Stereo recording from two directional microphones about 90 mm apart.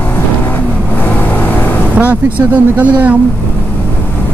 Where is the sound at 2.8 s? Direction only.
15° right (ahead or behind).